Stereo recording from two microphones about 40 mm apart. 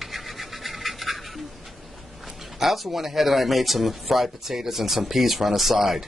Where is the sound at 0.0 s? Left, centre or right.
Centre.